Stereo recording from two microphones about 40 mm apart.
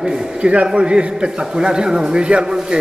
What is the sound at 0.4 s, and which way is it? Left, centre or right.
A man's voice, right.